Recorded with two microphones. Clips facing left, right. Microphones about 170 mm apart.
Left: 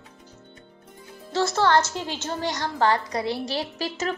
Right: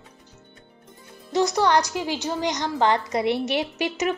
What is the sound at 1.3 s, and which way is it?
A woman's voice, 15° right (ahead or behind).